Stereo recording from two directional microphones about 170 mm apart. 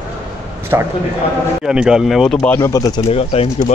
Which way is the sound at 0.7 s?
15° right (ahead or behind).